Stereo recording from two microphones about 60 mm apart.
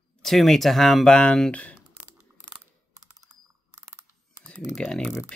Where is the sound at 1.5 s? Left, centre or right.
Left.